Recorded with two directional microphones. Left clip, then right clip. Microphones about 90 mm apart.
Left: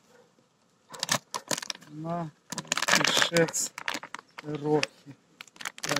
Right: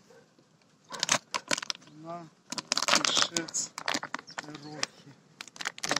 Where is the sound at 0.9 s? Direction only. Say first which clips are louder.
Right 1 dB; 25° left (ahead or behind).